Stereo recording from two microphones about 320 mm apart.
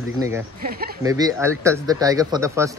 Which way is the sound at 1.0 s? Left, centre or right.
Centre.